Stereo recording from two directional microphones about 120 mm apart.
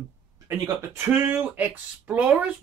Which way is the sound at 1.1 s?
20° right (ahead or behind).